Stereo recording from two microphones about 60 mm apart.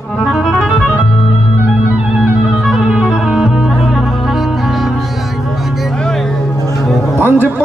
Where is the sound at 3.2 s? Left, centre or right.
Centre.